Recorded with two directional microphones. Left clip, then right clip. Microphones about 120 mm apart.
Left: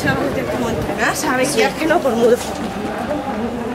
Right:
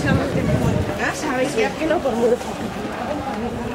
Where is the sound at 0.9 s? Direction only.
35° left (ahead or behind).